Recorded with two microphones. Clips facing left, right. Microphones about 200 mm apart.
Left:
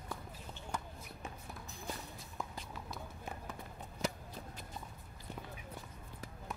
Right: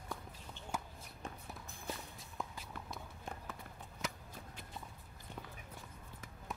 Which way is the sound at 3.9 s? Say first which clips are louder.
Left 6 dB; 35° left (ahead or behind).